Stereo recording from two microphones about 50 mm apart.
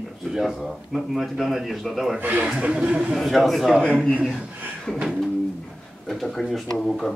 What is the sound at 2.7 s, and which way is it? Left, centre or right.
Speech, centre.